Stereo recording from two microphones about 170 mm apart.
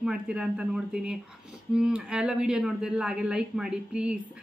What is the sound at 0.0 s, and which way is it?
Speech, 5° right (ahead or behind).